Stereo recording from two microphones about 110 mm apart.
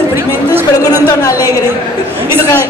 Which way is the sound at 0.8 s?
35° left (ahead or behind).